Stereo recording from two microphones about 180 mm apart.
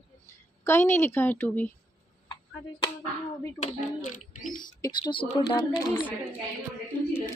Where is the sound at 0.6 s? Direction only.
15° left (ahead or behind).